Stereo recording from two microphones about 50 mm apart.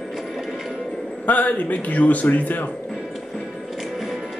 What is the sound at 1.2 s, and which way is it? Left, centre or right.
A man's voice, left.